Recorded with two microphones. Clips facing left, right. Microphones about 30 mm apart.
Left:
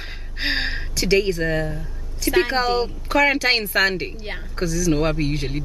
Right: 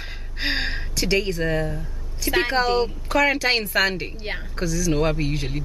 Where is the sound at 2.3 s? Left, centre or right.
Centre.